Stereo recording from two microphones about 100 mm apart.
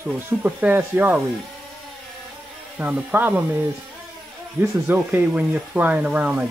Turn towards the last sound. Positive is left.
turn(degrees=-15)  # may be behind; listen again after turning